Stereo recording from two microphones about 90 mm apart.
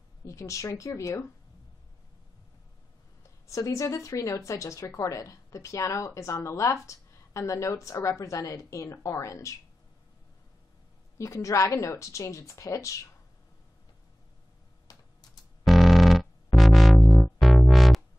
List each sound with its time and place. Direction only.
0.2 s a woman's voice: 35° left (ahead or behind)
3.4 s a woman's voice: 35° left (ahead or behind)
11.1 s a woman's voice: 35° left (ahead or behind)
14.9 s typing: 45° left (ahead or behind)
15.6 s music: centre (ahead or behind)